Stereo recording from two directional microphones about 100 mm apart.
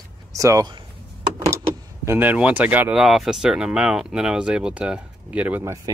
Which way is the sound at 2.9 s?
Centre (ahead or behind).